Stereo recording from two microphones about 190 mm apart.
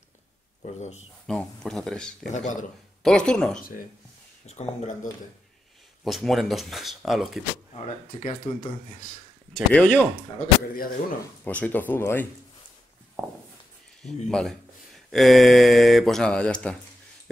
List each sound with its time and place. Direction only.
0.6 s a man's voice: 35° left (ahead or behind)
1.2 s speech: 5° left (ahead or behind)
2.2 s speech: 40° left (ahead or behind)
3.0 s speech: 5° left (ahead or behind)
4.5 s speech: 35° left (ahead or behind)
6.0 s speech: centre (ahead or behind)
7.7 s speech: 45° left (ahead or behind)
9.5 s speech: 5° left (ahead or behind)
11.4 s speech: 10° left (ahead or behind)
14.0 s speech: 5° left (ahead or behind)